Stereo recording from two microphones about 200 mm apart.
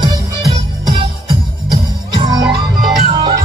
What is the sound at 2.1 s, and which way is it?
Music, 25° right (ahead or behind).